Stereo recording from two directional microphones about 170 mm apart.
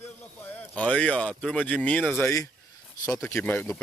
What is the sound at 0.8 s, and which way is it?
Speech, 5° left (ahead or behind).